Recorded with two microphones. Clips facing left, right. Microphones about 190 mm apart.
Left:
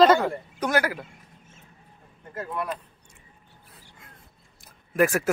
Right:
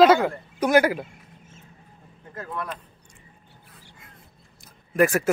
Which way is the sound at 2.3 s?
5° left (ahead or behind).